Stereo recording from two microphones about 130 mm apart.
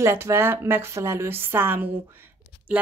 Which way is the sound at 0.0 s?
20° right (ahead or behind).